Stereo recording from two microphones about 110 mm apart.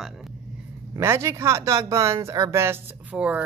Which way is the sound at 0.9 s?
25° right (ahead or behind).